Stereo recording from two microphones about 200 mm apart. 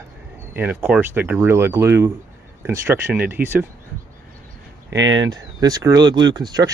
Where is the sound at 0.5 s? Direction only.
10° right (ahead or behind).